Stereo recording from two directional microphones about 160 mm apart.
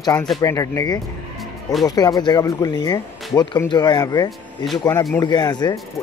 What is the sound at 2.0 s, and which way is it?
Speech, 25° left (ahead or behind).